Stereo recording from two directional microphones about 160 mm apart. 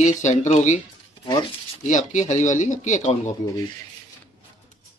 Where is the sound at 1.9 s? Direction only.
50° left (ahead or behind).